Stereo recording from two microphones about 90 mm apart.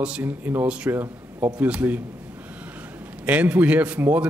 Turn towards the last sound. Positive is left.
turn(degrees=-15)  # may be behind; listen again after turning